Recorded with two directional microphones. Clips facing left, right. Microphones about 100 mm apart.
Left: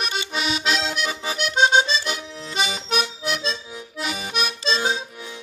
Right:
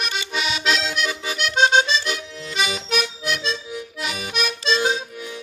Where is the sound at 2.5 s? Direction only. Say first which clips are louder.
Right 1 dB; 35° left (ahead or behind).